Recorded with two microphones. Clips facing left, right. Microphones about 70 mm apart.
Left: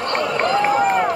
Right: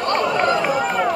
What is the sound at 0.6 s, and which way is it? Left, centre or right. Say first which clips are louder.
Run: left 3 dB; left.